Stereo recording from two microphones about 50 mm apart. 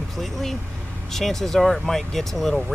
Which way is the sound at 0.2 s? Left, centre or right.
Centre.